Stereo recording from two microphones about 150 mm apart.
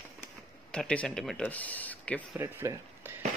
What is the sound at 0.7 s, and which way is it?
Speech, 5° left (ahead or behind).